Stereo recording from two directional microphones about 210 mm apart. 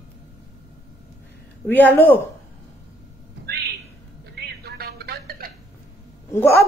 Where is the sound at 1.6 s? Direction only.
10° left (ahead or behind).